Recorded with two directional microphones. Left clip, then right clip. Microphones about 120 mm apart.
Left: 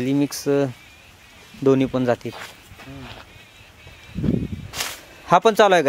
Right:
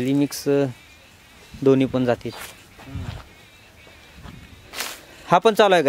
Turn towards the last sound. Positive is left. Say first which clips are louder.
# left 1 dB
turn(degrees=-5)  # may be behind; listen again after turning